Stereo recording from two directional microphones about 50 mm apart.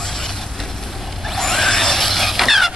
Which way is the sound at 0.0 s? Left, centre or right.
Centre.